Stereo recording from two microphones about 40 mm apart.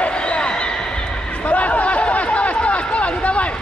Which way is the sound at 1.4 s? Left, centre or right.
Left.